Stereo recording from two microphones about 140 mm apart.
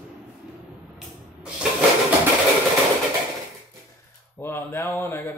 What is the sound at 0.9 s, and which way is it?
Spray, 5° right (ahead or behind).